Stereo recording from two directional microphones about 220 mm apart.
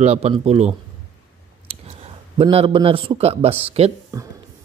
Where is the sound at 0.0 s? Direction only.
30° right (ahead or behind).